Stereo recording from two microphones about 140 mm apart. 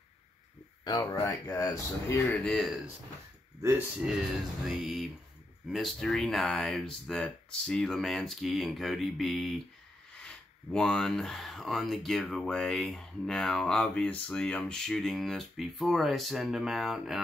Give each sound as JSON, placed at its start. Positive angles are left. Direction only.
{"t": 0.8, "sound": "speech", "side_deg": 35}
{"t": 1.2, "sound": "speech", "side_deg": 20}
{"t": 2.3, "sound": "speech", "side_deg": 5}
{"t": 3.6, "sound": "speech", "side_deg": -10}
{"t": 4.6, "sound": "speech", "side_deg": 0}